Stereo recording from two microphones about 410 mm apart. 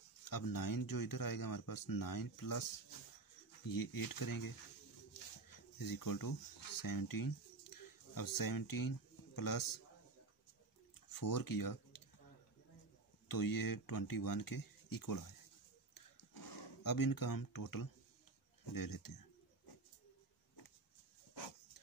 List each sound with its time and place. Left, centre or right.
0.2 s speech: left
5.8 s speech: left
11.1 s speech: left
13.3 s speech: left
15.9 s a sound: left
18.6 s speech: left